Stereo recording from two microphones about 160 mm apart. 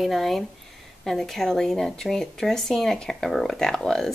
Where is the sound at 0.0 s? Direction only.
Centre (ahead or behind).